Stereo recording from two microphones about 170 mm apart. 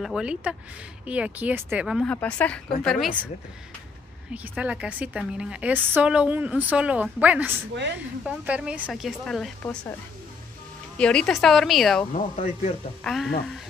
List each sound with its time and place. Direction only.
0.0 s a woman's voice: 5° right (ahead or behind)
4.3 s a woman's voice: 5° right (ahead or behind)
11.0 s speech: 5° left (ahead or behind)
12.1 s speech: 45° left (ahead or behind)
13.0 s speech: centre (ahead or behind)